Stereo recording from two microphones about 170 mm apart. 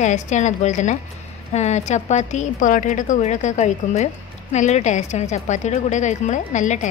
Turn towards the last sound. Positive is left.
turn(degrees=45)  # may be behind; listen again after turning